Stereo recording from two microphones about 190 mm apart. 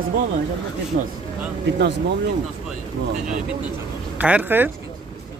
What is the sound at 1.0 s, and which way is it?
Speech, 45° right (ahead or behind).